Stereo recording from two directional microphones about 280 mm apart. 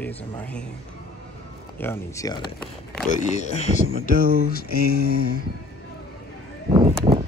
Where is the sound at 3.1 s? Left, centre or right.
Left.